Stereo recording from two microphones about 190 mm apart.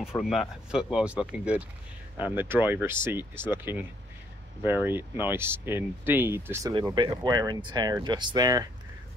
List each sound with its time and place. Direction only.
0.1 s speech: centre (ahead or behind); by 8.6 s 20° right (ahead or behind)